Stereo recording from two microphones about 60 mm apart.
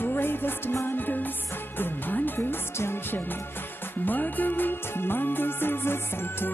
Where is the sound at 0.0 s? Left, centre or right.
Left.